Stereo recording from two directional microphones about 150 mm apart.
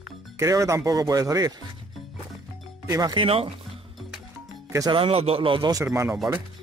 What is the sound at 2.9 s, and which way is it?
Speech, 30° right (ahead or behind).